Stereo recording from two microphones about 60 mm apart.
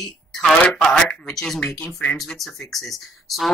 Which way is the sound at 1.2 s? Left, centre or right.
Centre.